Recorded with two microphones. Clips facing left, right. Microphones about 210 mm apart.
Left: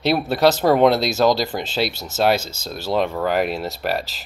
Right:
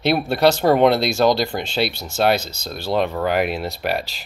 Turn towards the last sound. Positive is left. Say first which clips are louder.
# even
turn(degrees=0)  # may be behind; listen again after turning